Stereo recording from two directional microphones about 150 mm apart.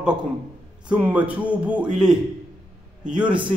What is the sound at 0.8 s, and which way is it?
A man's voice, 10° right (ahead or behind).